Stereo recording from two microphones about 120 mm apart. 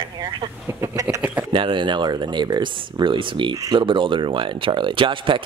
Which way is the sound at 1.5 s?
45° right (ahead or behind).